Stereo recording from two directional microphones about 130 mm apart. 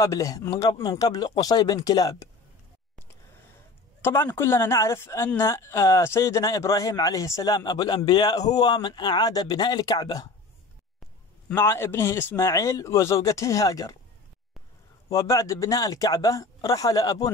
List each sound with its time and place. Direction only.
0.0 s a man's voice: 25° left (ahead or behind)
4.0 s a man's voice: 20° left (ahead or behind)
11.4 s a man's voice: 20° left (ahead or behind)
15.0 s a man's voice: 25° left (ahead or behind)